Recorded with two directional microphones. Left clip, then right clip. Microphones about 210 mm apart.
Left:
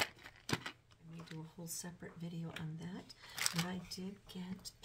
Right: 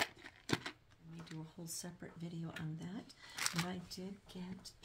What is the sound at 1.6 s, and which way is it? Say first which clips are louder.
Speech: left 1 dB; 25° right (ahead or behind).